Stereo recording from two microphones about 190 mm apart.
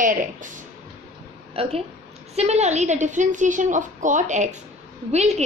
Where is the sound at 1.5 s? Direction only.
30° right (ahead or behind).